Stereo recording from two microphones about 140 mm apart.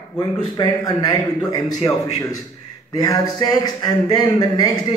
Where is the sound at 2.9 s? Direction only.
30° left (ahead or behind).